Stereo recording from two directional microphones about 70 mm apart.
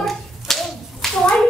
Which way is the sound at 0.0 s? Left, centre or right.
Centre.